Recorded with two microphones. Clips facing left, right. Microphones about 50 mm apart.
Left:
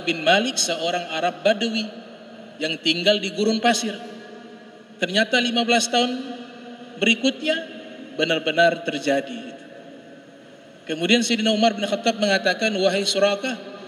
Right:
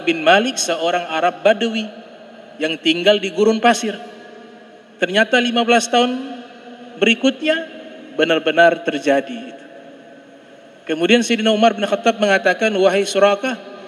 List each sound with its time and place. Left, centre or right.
0.0 s a man's voice: right
5.0 s a man's voice: right
10.9 s a man's voice: right